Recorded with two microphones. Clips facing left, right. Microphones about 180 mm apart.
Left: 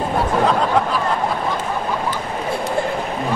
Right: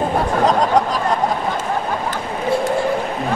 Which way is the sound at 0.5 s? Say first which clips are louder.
Right 2 dB; 40° right (ahead or behind).